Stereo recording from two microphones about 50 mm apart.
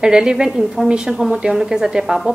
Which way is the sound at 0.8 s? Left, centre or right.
Centre.